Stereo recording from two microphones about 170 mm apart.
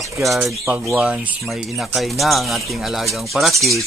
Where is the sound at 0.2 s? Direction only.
Centre (ahead or behind).